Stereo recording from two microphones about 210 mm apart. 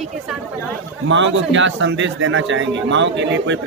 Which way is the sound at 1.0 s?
65° right (ahead or behind).